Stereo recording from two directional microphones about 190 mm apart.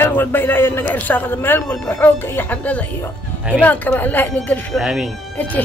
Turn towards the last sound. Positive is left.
turn(degrees=10)  # may be behind; listen again after turning